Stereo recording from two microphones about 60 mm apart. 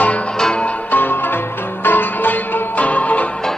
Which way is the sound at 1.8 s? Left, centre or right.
Left.